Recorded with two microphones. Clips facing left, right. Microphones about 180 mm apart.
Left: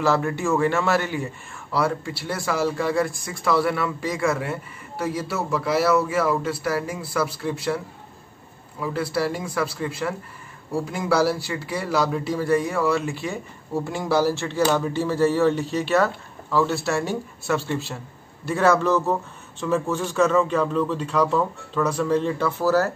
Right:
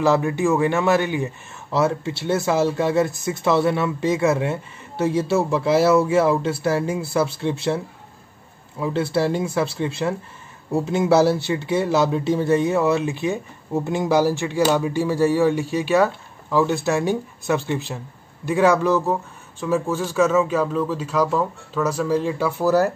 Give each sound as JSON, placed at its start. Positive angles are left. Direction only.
{"t": 0.0, "sound": "a man's voice", "side_deg": -15}